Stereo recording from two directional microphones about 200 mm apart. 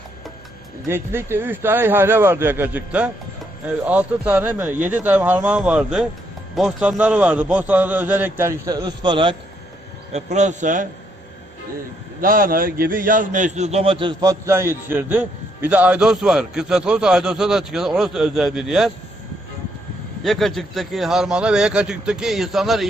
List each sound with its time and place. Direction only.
0.8 s a man's voice: 10° right (ahead or behind)
10.1 s a man's voice: 35° right (ahead or behind)
12.2 s a man's voice: 45° right (ahead or behind); by 18.9 s 5° right (ahead or behind)
20.2 s a man's voice: centre (ahead or behind)